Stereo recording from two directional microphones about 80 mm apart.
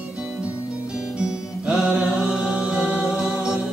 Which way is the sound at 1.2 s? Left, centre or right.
Centre.